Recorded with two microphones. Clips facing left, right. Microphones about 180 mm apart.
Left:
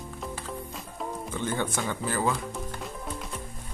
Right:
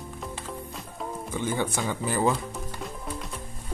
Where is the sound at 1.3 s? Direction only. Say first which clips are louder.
Right 2 dB; 10° right (ahead or behind).